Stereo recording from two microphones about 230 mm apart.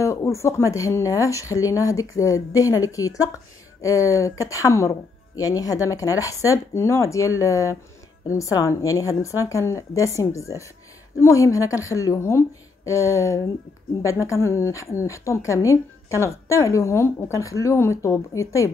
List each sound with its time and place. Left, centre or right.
0.0 s a woman's voice: centre